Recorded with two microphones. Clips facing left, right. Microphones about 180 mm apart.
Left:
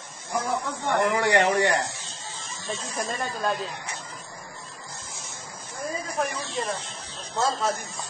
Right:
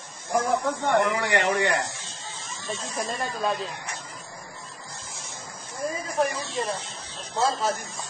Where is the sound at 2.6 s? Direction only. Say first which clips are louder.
Even; centre (ahead or behind).